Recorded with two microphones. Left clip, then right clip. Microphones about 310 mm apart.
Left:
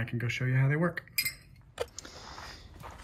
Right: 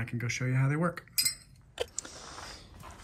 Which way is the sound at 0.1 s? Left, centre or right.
Left.